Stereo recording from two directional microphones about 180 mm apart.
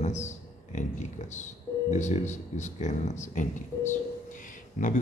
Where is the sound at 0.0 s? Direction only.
40° left (ahead or behind).